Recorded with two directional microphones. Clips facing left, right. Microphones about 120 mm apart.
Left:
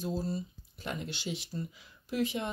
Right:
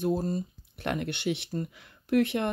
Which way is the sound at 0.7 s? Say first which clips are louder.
Right 7 dB; 65° right (ahead or behind).